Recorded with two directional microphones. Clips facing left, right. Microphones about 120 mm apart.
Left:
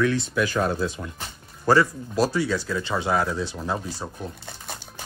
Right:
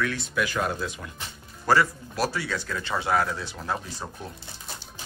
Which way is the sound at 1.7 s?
20° left (ahead or behind).